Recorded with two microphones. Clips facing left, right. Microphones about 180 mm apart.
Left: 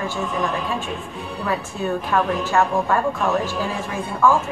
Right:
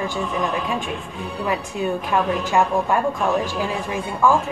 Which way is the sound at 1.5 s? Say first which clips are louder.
Even; 15° right (ahead or behind).